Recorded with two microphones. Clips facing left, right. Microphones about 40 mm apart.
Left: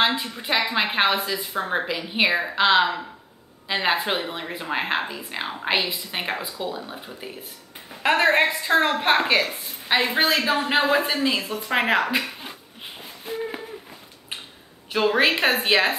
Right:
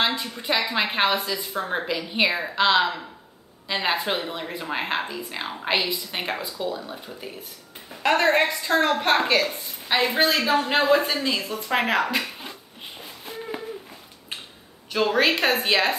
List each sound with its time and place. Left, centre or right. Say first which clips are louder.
0.0 s a woman's voice: left 2 dB; centre
13.0 s a sound: left 6 dB; centre
14.9 s a woman's voice: left 1 dB; centre